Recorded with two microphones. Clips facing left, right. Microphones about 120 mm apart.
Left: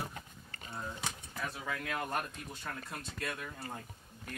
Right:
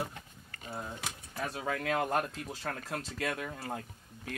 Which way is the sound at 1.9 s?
75° right (ahead or behind).